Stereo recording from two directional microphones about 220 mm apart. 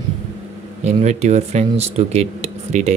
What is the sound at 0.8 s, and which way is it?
Speech, 30° right (ahead or behind).